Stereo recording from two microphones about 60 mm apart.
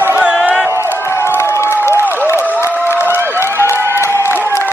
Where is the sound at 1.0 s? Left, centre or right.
Left.